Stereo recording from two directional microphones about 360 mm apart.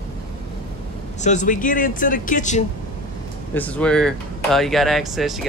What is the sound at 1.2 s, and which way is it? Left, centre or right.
Speech, centre.